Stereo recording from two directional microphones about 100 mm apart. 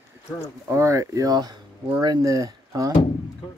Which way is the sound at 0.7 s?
30° right (ahead or behind).